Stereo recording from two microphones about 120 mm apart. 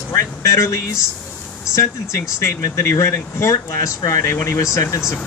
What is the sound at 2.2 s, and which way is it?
Speech, 25° left (ahead or behind).